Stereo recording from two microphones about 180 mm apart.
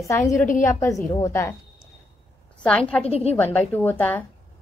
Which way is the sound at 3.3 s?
10° left (ahead or behind).